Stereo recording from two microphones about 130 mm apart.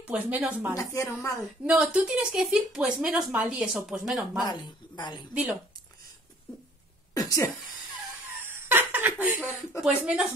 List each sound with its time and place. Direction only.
0.0 s speech: 10° right (ahead or behind)
0.7 s speech: 25° left (ahead or behind)
1.6 s speech: 10° right (ahead or behind)
4.5 s a woman's voice: 35° left (ahead or behind)
5.3 s speech: 5° right (ahead or behind)
7.2 s speech: 25° left (ahead or behind)
8.5 s laughter: 15° right (ahead or behind)
9.8 s speech: 5° right (ahead or behind)